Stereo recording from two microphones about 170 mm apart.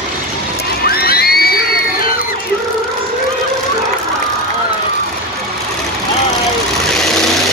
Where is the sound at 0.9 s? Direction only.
65° left (ahead or behind).